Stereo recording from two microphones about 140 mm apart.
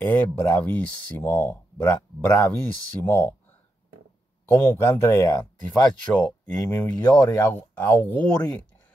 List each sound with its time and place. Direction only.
0.0 s speech: 10° left (ahead or behind)
4.5 s speech: 20° left (ahead or behind)
5.7 s speech: 5° left (ahead or behind)
6.9 s speech: 30° left (ahead or behind)
7.5 s speech: 10° left (ahead or behind)